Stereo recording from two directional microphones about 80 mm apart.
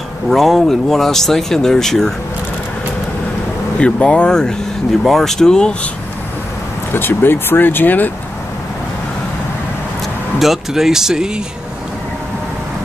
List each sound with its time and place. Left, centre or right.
0.3 s speech: centre
3.8 s speech: centre
6.9 s speech: left
10.4 s speech: centre